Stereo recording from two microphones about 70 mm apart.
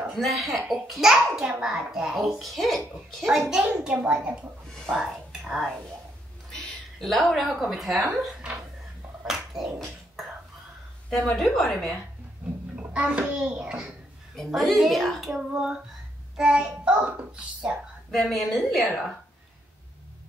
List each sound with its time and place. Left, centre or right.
0.1 s a child's voice: centre
1.1 s a child's voice: centre
3.3 s a child's voice: centre
4.0 s a woman's voice: right
4.7 s speech: centre
6.5 s a woman's voice: centre
9.2 s a sound: centre
11.1 s a child's voice: centre
12.7 s a child's voice: centre
14.3 s a child's voice: centre
18.1 s a child's voice: centre